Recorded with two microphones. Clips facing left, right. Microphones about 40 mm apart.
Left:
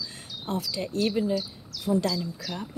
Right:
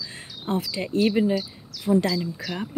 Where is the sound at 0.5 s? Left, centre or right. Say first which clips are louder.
Right 4 dB; right.